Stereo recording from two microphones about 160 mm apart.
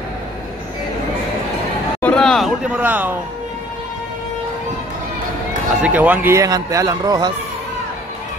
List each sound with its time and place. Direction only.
2.0 s speech: 5° left (ahead or behind); by 3.2 s 10° right (ahead or behind)
5.8 s speech: 10° right (ahead or behind); by 7.3 s 25° right (ahead or behind)